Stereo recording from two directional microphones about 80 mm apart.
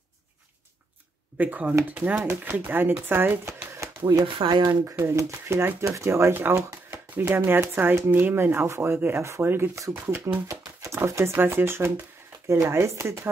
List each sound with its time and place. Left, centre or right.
1.4 s speech: centre; by 3.9 s right
4.3 s speech: right
4.8 s speech: right
10.5 s a sound: right
11.0 s speech: right